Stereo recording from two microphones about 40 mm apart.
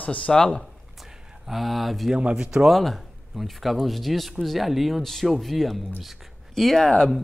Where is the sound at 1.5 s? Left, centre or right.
Centre.